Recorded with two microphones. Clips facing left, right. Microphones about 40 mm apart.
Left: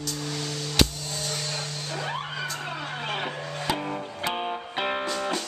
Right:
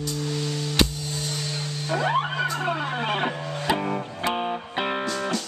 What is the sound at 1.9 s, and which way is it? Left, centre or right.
Music, centre.